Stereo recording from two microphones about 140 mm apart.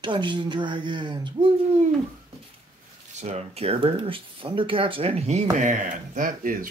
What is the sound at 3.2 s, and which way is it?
Speech, 50° right (ahead or behind).